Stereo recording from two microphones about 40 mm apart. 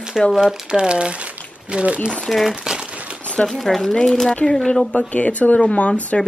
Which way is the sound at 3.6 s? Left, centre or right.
Centre.